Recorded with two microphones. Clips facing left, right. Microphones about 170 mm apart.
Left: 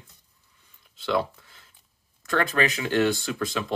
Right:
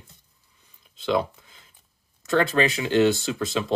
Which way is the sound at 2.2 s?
25° right (ahead or behind).